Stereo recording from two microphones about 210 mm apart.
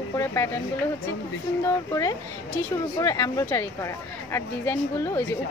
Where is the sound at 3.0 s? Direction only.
15° left (ahead or behind).